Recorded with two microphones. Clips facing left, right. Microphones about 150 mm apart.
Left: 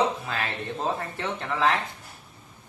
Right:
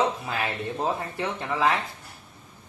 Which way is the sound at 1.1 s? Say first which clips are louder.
Right 1 dB; 15° right (ahead or behind).